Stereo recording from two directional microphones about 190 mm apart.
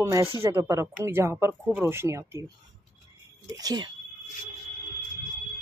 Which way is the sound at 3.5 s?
20° right (ahead or behind).